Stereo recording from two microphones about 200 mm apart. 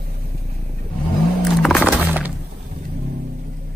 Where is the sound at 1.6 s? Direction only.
Centre (ahead or behind).